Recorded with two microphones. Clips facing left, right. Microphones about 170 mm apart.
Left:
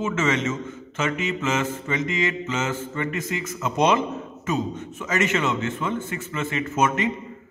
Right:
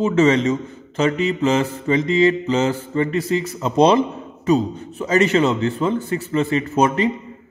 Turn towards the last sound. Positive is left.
turn(degrees=-35)  # may be behind; listen again after turning